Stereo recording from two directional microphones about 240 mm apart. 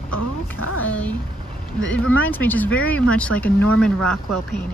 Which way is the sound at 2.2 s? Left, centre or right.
Centre.